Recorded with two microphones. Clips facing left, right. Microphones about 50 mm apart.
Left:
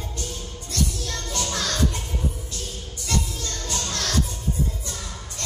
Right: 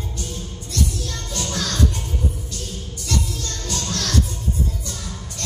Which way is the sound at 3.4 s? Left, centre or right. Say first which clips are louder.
Right 1 dB; left.